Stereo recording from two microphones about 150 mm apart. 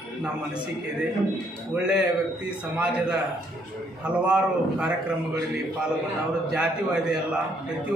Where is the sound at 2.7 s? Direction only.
10° right (ahead or behind).